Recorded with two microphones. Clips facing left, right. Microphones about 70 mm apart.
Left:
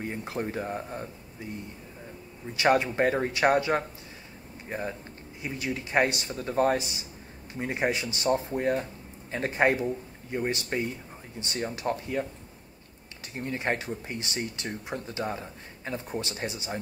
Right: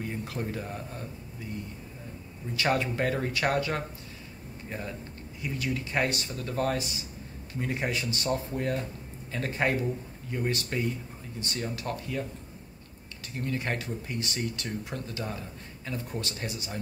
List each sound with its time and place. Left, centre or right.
0.0 s speech: left
2.5 s speech: left
13.3 s speech: left